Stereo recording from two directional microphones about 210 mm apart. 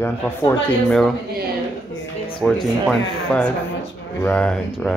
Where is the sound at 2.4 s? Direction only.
5° left (ahead or behind).